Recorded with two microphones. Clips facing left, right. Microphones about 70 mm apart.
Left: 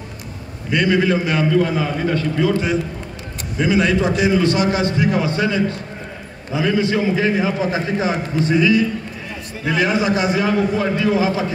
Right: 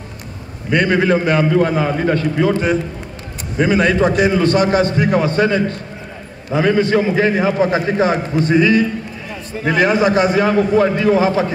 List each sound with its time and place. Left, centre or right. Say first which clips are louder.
0.7 s a man's voice: right 2 dB; right